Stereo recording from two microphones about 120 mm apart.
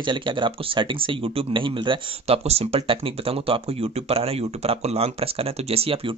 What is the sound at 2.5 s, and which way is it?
Speech, 55° right (ahead or behind).